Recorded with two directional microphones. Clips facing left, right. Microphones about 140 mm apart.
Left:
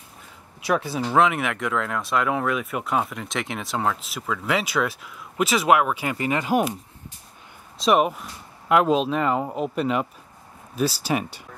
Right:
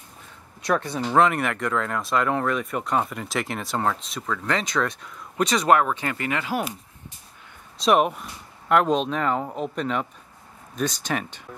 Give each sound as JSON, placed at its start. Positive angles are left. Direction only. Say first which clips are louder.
{"t": 0.6, "sound": "speech", "louder": "left 1 dB", "side_deg": 5}
{"t": 6.1, "sound": "speech", "louder": "left 5 dB", "side_deg": 20}
{"t": 7.7, "sound": "speech", "louder": "even", "side_deg": 0}